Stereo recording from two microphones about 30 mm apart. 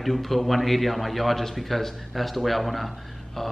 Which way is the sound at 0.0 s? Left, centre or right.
Centre.